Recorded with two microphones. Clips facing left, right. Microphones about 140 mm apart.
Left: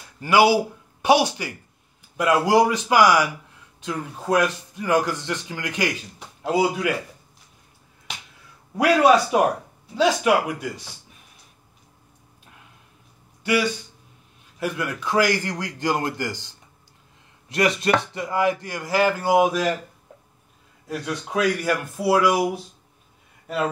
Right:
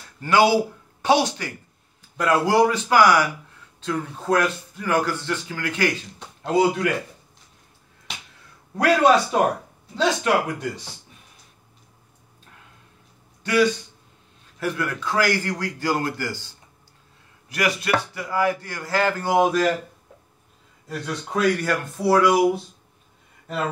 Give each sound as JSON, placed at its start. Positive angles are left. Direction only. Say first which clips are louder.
{"t": 0.2, "sound": "speech", "louder": "left 1 dB", "side_deg": 10}
{"t": 8.7, "sound": "speech", "louder": "left 1 dB", "side_deg": 10}
{"t": 13.4, "sound": "a sound", "louder": "right 3 dB", "side_deg": 10}
{"t": 14.6, "sound": "speech", "louder": "right 1 dB", "side_deg": 15}
{"t": 20.9, "sound": "speech", "louder": "left 1 dB", "side_deg": 5}